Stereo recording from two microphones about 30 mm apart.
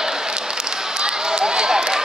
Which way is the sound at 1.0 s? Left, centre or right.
Right.